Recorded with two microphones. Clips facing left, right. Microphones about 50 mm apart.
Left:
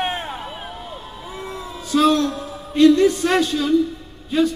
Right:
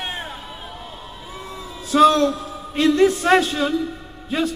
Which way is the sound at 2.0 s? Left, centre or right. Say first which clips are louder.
Right 3 dB; centre.